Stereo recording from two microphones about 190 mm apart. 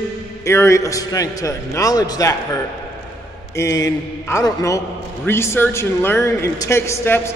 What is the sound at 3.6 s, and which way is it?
A man's voice, 15° left (ahead or behind).